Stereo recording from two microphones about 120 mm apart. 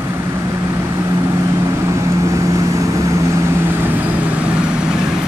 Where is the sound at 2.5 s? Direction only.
25° right (ahead or behind); by 5.0 s 10° right (ahead or behind).